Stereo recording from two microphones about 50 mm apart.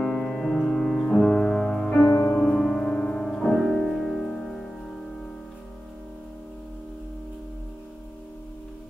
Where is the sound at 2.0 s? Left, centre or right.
Left.